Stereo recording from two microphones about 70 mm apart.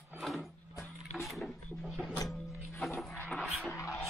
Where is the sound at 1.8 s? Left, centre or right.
Centre.